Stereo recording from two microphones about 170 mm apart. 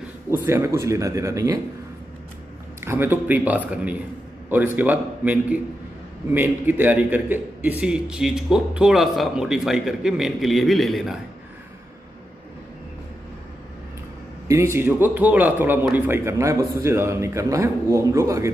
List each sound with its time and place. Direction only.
0.3 s a man's voice: 15° right (ahead or behind)
2.8 s a man's voice: 15° right (ahead or behind)
14.5 s a man's voice: 15° right (ahead or behind)